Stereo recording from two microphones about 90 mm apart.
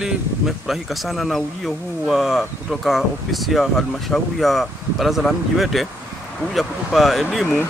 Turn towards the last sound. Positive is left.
turn(degrees=0)  # may be behind; listen again after turning